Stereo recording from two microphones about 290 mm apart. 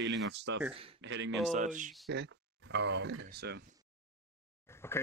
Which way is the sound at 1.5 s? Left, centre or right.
Right.